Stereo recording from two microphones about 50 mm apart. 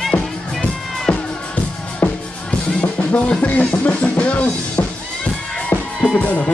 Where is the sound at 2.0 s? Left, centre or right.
Left.